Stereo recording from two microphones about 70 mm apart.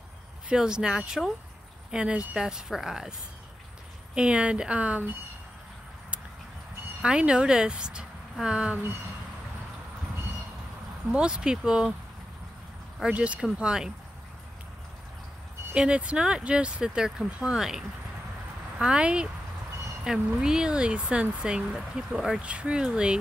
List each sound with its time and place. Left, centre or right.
0.5 s speech: centre
7.0 s speech: centre
11.1 s speech: centre
13.0 s speech: centre
15.7 s speech: centre
20.3 s speech: centre